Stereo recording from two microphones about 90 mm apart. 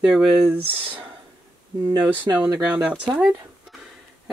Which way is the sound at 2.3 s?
40° right (ahead or behind).